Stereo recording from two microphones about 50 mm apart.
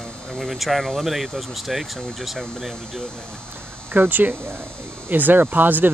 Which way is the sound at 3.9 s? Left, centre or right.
Right.